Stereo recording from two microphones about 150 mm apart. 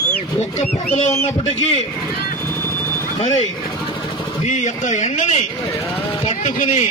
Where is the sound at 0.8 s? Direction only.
15° left (ahead or behind).